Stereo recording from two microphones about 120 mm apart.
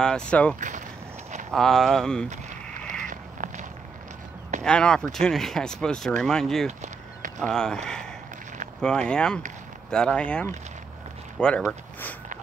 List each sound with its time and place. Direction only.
0.0 s speech: 5° left (ahead or behind)
0.6 s speech: 90° right
1.5 s speech: 5° left (ahead or behind)
2.8 s a sound: 10° left (ahead or behind)
3.1 s walk: 90° right
4.6 s speech: 5° left (ahead or behind)
6.8 s a sound: 90° right
7.3 s speech: 5° left (ahead or behind)
11.3 s a sound: 5° left (ahead or behind)